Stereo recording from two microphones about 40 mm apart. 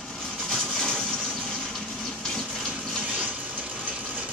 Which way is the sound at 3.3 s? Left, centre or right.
Right.